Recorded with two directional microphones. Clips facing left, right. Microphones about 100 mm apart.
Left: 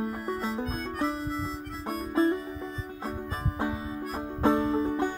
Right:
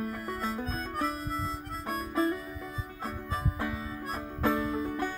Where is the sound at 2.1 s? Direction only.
30° left (ahead or behind).